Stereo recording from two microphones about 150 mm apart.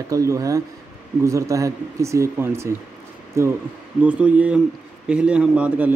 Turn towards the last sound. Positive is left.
turn(degrees=-10)  # may be behind; listen again after turning